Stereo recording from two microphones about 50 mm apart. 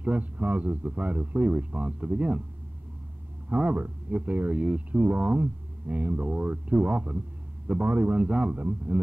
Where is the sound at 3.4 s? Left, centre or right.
Right.